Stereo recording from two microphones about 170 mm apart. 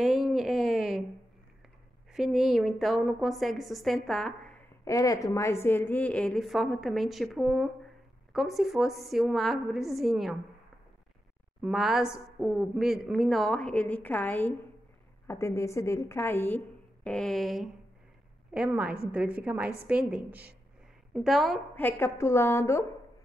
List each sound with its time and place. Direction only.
0.0 s a sound: centre (ahead or behind)
2.1 s a woman's voice: centre (ahead or behind)
4.8 s a woman's voice: 20° left (ahead or behind); by 10.3 s centre (ahead or behind)
11.6 s a woman's voice: centre (ahead or behind)
21.7 s a woman's voice: 10° left (ahead or behind)